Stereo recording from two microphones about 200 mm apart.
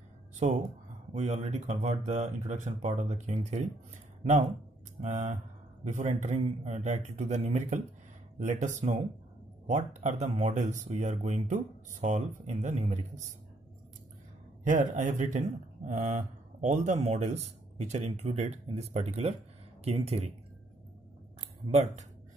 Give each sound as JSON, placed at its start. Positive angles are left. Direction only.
{"t": 0.4, "sound": "speech", "side_deg": -35}
{"t": 14.6, "sound": "speech", "side_deg": -40}